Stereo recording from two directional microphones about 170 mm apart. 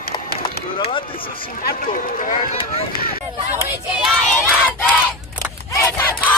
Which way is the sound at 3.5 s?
10° right (ahead or behind).